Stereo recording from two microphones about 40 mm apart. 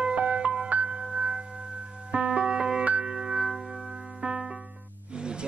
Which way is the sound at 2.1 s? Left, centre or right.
Right.